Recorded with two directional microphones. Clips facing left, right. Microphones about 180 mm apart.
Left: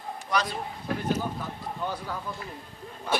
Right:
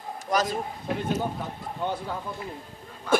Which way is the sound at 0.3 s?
45° right (ahead or behind).